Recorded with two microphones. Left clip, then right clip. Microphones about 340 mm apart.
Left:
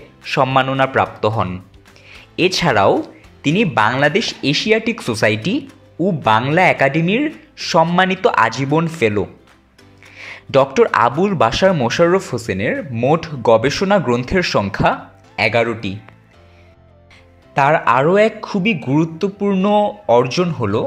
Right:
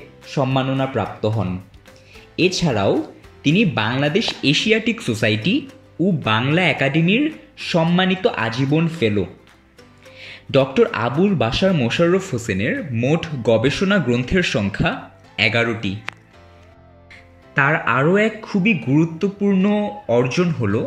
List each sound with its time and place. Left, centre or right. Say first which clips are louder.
0.5 s a man's voice: left 6 dB; left
2.0 s music: left 2 dB; left
3.4 s speech: left 4 dB; centre
10.1 s music: left 3 dB; centre
11.2 s speech: left 5 dB; centre
17.6 s speech: left 4 dB; centre